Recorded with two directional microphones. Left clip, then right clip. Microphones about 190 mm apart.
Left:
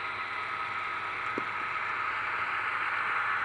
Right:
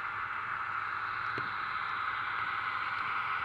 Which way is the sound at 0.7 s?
10° left (ahead or behind).